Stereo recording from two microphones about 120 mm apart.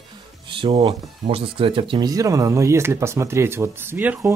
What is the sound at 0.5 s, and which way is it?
Speech, 45° right (ahead or behind).